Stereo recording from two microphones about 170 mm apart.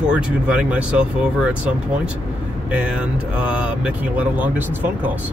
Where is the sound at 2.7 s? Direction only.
5° right (ahead or behind).